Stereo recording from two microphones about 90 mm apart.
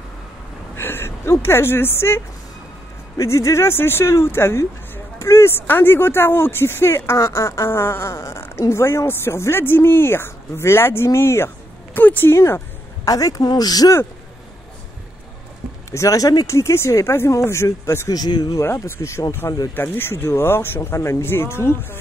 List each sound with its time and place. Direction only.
0.7 s speech: 25° left (ahead or behind)
11.1 s a sound: 30° left (ahead or behind)
13.1 s speech: 45° left (ahead or behind)
15.9 s speech: 35° left (ahead or behind)
18.1 s speech: 50° left (ahead or behind)
18.6 s speech: 30° left (ahead or behind)